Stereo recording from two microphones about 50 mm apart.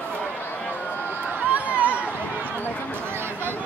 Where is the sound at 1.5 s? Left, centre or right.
Right.